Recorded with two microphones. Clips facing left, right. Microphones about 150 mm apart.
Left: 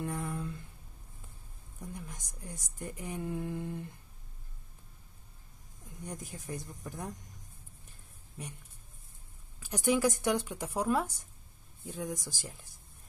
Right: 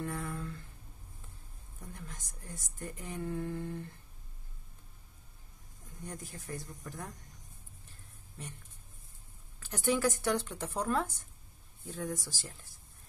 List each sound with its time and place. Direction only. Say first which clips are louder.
0.0 s a sound: left 2 dB; 20° left (ahead or behind)
1.8 s speech: left 4 dB; 15° left (ahead or behind)
6.0 s speech: left 2 dB; 15° left (ahead or behind)
8.4 s speech: left 2 dB; 15° left (ahead or behind)
9.6 s speech: left 2 dB; 10° left (ahead or behind)